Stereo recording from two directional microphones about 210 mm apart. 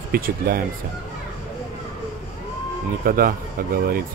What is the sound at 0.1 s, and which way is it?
Speech, 45° right (ahead or behind).